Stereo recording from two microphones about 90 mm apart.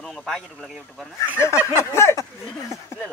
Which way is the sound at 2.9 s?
30° left (ahead or behind).